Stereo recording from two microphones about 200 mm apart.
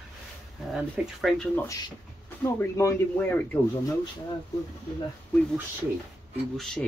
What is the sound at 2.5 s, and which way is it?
Speech, 15° left (ahead or behind).